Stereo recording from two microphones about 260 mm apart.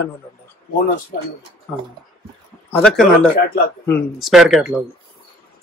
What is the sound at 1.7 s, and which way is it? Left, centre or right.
Speech, centre.